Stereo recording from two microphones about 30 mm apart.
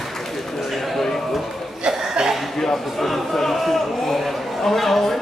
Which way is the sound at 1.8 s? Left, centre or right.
Right.